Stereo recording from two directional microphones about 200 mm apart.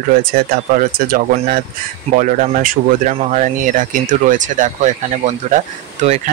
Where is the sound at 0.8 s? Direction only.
45° right (ahead or behind).